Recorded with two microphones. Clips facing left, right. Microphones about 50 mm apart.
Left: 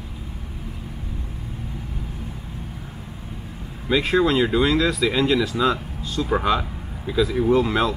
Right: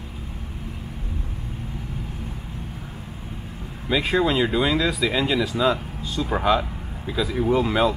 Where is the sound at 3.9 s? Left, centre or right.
Centre.